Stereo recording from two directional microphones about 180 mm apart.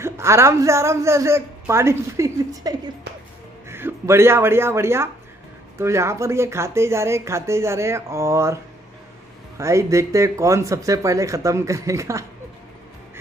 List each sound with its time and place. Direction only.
0.0 s speech: 15° right (ahead or behind)
9.6 s speech: 15° right (ahead or behind)